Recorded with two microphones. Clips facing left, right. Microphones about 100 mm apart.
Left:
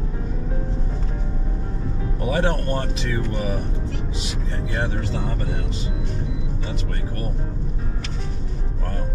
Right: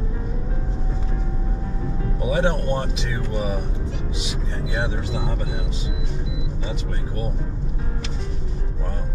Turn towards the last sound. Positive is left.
turn(degrees=-10)  # may be behind; listen again after turning